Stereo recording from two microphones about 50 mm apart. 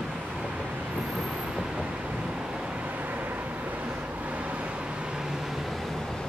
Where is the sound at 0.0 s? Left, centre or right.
Centre.